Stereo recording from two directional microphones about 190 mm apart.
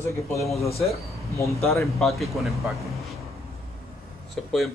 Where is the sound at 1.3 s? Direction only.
15° left (ahead or behind).